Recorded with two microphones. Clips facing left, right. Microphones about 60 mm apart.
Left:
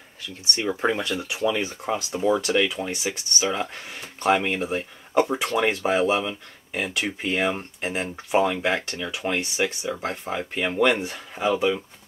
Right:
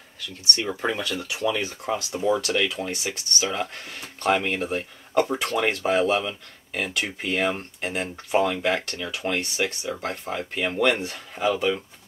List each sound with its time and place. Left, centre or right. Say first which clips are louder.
0.7 s speech: left 3 dB; left